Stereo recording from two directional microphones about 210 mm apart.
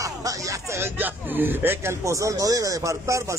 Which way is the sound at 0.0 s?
15° right (ahead or behind).